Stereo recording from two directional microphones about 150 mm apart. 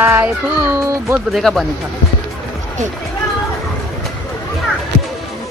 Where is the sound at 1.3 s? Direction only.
Centre (ahead or behind).